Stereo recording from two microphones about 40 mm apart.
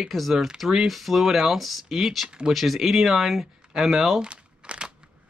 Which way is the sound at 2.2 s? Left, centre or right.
Right.